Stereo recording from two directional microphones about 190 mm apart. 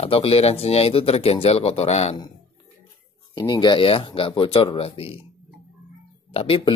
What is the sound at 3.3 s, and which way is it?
Speech, 20° left (ahead or behind).